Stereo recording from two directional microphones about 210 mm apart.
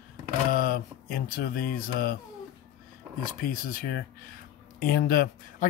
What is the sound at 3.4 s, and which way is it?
Speech, 45° left (ahead or behind).